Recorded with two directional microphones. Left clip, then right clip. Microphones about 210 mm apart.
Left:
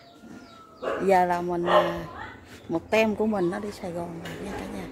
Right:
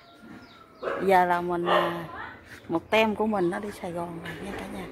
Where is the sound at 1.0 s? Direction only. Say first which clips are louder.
Even; 5° right (ahead or behind).